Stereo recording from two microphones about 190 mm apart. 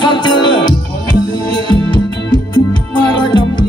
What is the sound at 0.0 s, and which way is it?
Music, 25° left (ahead or behind).